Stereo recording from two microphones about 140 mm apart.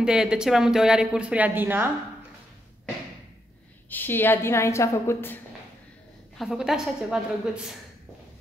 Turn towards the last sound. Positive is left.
turn(degrees=-5)  # may be behind; listen again after turning